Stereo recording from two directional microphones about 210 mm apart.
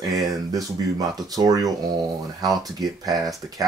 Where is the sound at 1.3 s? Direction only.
15° right (ahead or behind).